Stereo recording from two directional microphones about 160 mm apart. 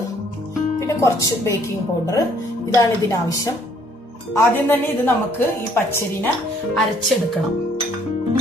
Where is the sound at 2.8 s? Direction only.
20° left (ahead or behind).